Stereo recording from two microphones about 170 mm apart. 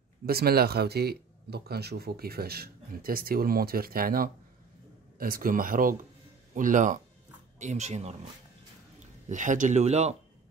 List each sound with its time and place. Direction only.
0.3 s speech: 65° right (ahead or behind); by 8.2 s 40° right (ahead or behind)
9.3 s speech: 50° right (ahead or behind)